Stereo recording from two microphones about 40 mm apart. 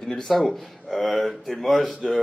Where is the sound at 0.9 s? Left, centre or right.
Centre.